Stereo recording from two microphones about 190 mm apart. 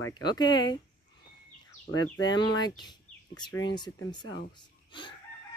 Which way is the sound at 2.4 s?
25° left (ahead or behind).